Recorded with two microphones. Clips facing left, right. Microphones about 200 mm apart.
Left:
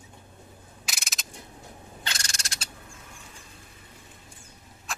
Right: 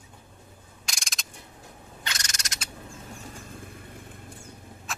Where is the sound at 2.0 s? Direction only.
30° left (ahead or behind).